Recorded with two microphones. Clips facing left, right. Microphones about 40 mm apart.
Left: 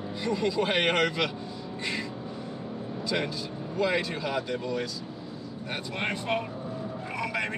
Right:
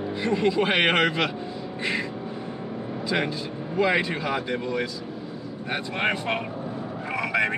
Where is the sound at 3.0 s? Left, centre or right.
Right.